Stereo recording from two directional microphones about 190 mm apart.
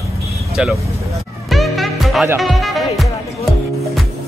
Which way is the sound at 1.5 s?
Centre (ahead or behind).